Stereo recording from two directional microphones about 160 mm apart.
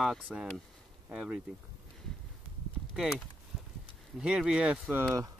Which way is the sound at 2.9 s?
5° right (ahead or behind).